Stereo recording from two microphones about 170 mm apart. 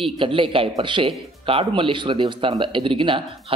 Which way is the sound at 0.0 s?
30° right (ahead or behind).